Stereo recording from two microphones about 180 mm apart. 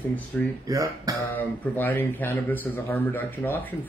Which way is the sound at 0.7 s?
20° right (ahead or behind).